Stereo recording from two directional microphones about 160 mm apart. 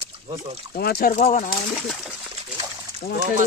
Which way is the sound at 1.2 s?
45° left (ahead or behind).